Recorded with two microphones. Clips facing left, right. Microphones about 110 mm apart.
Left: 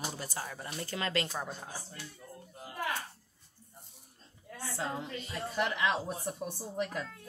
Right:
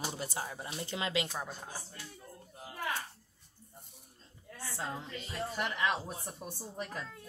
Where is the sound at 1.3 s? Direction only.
Centre (ahead or behind).